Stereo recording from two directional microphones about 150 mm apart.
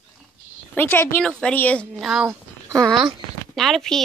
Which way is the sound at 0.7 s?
10° left (ahead or behind).